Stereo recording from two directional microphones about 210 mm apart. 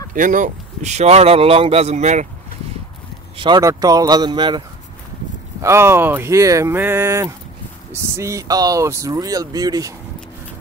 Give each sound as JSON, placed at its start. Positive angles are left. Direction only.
{"t": 0.1, "sound": "speech", "side_deg": -40}
{"t": 3.3, "sound": "speech", "side_deg": -20}